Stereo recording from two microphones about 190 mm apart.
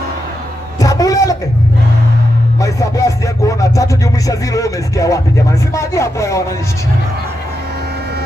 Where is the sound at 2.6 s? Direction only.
15° left (ahead or behind).